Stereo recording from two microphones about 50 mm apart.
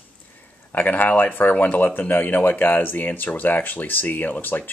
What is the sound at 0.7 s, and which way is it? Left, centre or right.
Speech, left.